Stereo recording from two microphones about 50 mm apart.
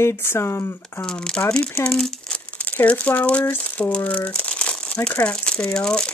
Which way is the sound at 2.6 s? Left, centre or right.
Left.